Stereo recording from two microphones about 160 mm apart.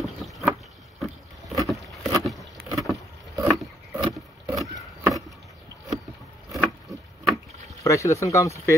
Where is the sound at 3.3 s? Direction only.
20° right (ahead or behind).